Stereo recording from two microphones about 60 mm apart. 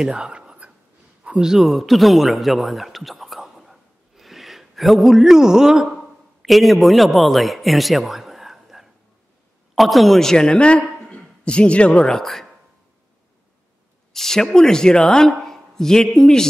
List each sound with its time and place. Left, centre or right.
0.0 s speech: centre
1.4 s a man's voice: centre
12.1 s speech: centre
14.1 s speech: centre